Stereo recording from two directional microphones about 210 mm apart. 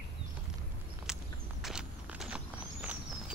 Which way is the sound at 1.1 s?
5° right (ahead or behind).